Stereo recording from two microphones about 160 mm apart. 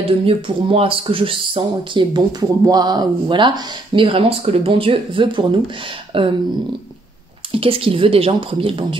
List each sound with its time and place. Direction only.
0.3 s speech: 35° right (ahead or behind)
7.5 s speech: 35° right (ahead or behind)